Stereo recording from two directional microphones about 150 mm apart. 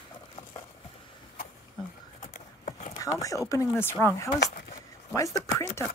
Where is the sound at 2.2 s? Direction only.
50° left (ahead or behind).